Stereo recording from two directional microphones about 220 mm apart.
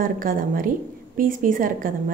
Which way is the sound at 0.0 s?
40° right (ahead or behind).